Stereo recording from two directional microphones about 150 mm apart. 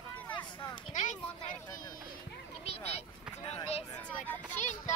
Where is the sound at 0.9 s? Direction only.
55° left (ahead or behind).